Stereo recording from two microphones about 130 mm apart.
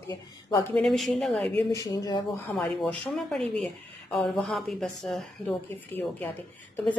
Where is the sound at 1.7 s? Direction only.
25° left (ahead or behind).